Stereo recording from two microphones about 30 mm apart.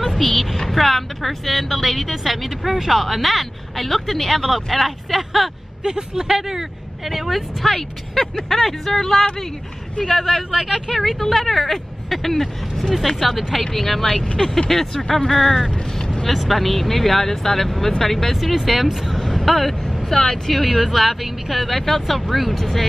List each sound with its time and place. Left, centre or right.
0.1 s a woman's voice: centre
5.9 s a man's voice: right
6.2 s speech: centre
7.1 s a woman's voice: centre
10.0 s speech: centre
10.5 s a man's voice: right
10.9 s a woman's voice: centre
13.7 s speech: centre
16.3 s speech: centre
18.3 s speech: centre
19.1 s speech: centre
20.6 s a woman's voice: centre